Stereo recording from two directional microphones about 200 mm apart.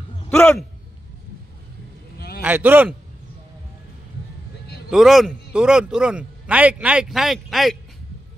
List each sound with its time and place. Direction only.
0.3 s a man's voice: 5° left (ahead or behind)
2.1 s vehicle: 50° left (ahead or behind)
2.4 s a man's voice: 10° right (ahead or behind)
4.9 s a man's voice: centre (ahead or behind)